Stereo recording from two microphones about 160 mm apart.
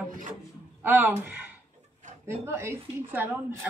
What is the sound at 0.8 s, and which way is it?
Speech, 15° right (ahead or behind).